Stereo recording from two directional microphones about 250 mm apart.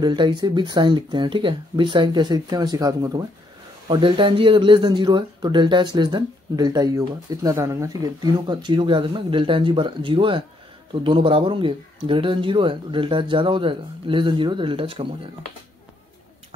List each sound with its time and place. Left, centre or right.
0.0 s speech: centre